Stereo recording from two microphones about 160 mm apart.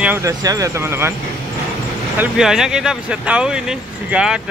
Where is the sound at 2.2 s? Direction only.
5° right (ahead or behind).